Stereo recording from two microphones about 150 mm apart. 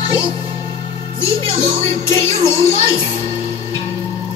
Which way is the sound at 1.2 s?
20° left (ahead or behind).